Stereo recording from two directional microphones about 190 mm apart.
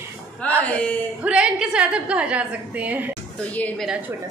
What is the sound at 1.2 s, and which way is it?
A woman's voice, 5° right (ahead or behind).